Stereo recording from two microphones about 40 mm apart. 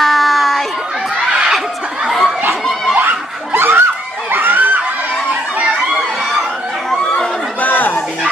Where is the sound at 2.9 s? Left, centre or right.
Right.